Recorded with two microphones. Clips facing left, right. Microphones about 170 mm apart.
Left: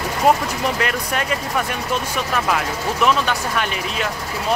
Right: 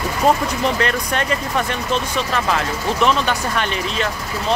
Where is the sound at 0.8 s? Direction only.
5° left (ahead or behind).